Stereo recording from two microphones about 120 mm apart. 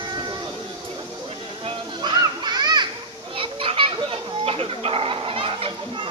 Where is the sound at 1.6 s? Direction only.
35° right (ahead or behind).